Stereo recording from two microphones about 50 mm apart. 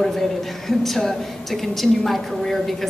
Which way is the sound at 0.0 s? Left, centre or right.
Centre.